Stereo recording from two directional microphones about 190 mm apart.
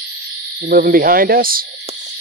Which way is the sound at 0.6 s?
50° right (ahead or behind).